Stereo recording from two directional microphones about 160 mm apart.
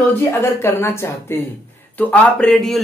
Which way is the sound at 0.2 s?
15° left (ahead or behind).